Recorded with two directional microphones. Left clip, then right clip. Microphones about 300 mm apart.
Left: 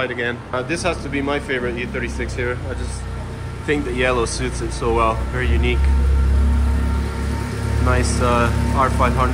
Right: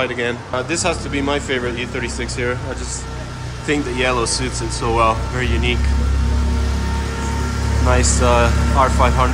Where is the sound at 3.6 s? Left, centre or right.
Centre.